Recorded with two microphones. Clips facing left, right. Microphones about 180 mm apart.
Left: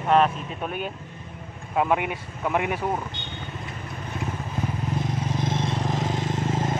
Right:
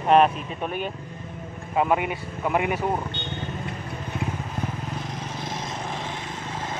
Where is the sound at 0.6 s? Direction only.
Centre (ahead or behind).